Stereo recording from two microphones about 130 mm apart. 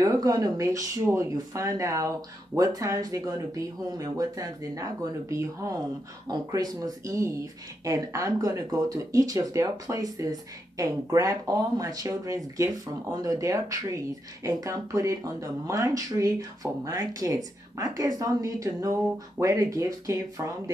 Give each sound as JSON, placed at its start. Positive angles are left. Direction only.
{"t": 0.0, "sound": "speech", "side_deg": -25}